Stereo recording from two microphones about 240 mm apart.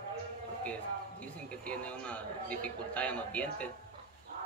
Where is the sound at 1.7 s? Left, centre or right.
Centre.